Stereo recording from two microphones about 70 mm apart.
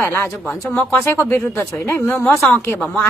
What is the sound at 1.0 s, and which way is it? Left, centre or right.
Speech, left.